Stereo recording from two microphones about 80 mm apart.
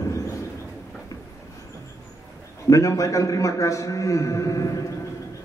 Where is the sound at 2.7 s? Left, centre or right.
Left.